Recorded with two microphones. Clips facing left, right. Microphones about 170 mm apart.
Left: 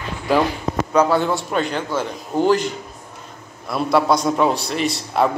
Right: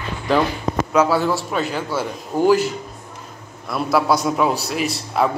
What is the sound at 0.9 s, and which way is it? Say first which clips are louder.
Speech: left 1 dB; 5° right (ahead or behind).